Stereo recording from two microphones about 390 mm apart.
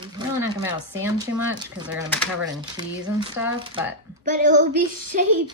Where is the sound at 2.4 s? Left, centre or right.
Centre.